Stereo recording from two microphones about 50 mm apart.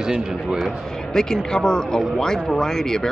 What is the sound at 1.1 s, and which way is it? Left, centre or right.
A man's voice, centre.